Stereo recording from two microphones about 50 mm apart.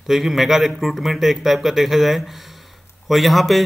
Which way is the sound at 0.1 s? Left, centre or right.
Centre.